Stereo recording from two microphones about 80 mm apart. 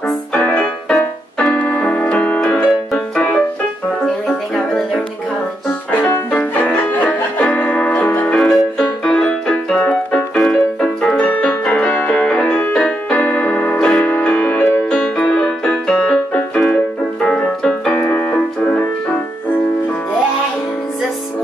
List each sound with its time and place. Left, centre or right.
0.3 s music: centre
1.4 s keyboard: centre
3.2 s music: centre
4.0 s music: centre
5.9 s music: centre
8.4 s music: centre
12.7 s keyboard: centre
13.7 s music: centre
18.1 s piano: centre